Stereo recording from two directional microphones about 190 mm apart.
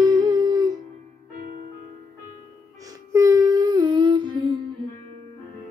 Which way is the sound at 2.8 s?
15° right (ahead or behind).